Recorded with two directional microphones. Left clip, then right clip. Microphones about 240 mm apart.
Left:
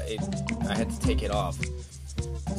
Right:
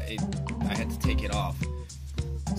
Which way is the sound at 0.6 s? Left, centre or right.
Centre.